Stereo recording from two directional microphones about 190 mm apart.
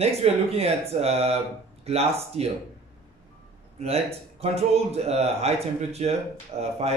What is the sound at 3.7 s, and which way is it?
Speech, 35° right (ahead or behind).